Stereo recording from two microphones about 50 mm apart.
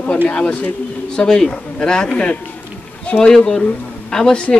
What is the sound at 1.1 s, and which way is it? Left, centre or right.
Speech, centre.